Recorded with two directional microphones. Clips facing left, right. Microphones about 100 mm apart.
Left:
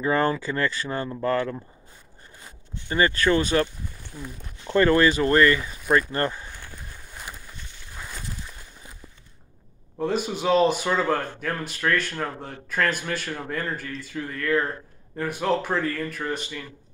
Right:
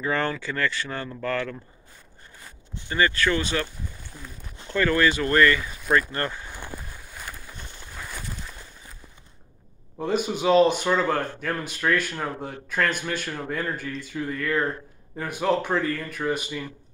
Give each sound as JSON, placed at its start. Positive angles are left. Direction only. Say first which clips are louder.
{"t": 0.0, "sound": "speech", "louder": "left 4 dB", "side_deg": 30}
{"t": 2.9, "sound": "speech", "louder": "left 2 dB", "side_deg": 30}
{"t": 4.1, "sound": "speech", "louder": "left 8 dB", "side_deg": 5}
{"t": 4.6, "sound": "speech", "louder": "left 3 dB", "side_deg": 30}
{"t": 5.6, "sound": "speech", "louder": "left 1 dB", "side_deg": 5}
{"t": 5.9, "sound": "speech", "louder": "left 2 dB", "side_deg": 25}
{"t": 9.9, "sound": "speech", "louder": "even", "side_deg": 0}